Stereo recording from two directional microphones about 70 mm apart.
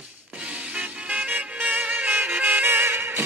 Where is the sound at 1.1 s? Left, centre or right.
Right.